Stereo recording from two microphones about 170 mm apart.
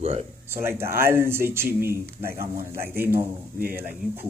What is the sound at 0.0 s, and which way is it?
Speech, 40° right (ahead or behind).